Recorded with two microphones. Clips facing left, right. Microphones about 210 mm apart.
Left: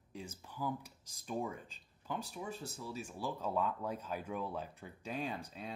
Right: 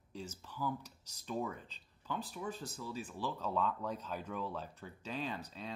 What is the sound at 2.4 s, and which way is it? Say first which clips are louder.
Speech: right 1 dB; 15° left (ahead or behind).